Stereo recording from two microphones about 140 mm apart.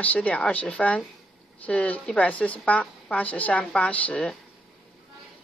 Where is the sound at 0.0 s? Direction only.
10° left (ahead or behind).